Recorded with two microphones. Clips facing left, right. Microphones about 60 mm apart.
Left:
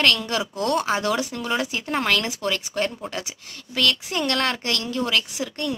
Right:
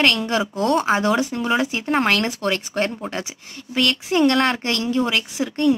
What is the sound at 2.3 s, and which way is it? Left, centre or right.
Speech, right.